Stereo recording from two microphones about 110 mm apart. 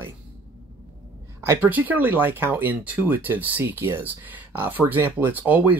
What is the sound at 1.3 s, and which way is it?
Speech, 20° right (ahead or behind).